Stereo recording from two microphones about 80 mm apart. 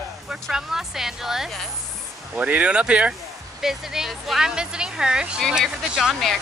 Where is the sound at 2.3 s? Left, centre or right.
Centre.